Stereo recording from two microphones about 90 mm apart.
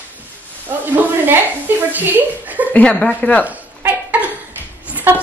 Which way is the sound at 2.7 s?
15° left (ahead or behind).